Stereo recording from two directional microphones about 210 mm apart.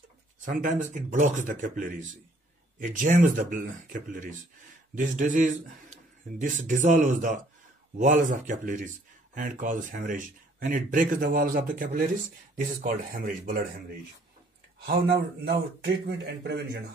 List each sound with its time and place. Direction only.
0.5 s a man's voice: 40° right (ahead or behind)
14.9 s speech: 50° right (ahead or behind)